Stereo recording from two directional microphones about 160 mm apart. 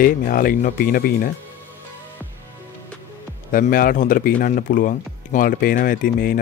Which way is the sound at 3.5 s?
60° left (ahead or behind).